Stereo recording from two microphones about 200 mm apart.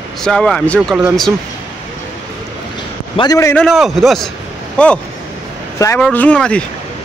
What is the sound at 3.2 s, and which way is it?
Speech, 15° left (ahead or behind).